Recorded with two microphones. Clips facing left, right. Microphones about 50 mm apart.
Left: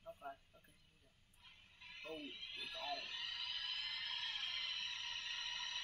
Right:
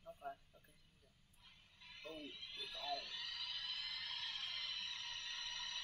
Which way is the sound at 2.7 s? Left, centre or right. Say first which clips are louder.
Right 1 dB; centre.